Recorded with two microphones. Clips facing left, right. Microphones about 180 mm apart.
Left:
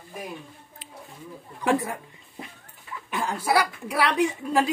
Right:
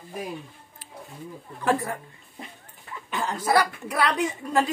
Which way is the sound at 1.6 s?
15° left (ahead or behind).